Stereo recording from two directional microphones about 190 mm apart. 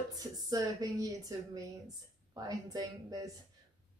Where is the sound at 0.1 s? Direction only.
20° right (ahead or behind).